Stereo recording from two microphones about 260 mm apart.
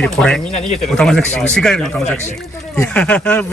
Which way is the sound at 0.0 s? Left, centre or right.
Centre.